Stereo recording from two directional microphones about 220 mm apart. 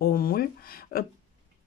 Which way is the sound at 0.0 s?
40° left (ahead or behind).